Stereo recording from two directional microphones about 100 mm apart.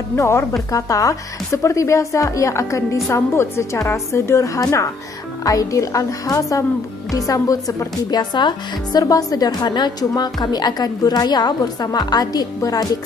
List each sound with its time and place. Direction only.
0.1 s a woman's voice: 30° left (ahead or behind)